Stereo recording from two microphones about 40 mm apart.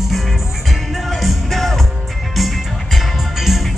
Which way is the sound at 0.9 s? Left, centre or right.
Centre.